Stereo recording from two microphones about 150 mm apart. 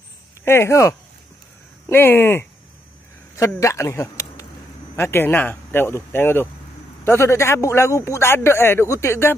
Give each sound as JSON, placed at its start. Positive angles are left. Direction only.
{"t": 0.5, "sound": "a man's voice", "side_deg": 15}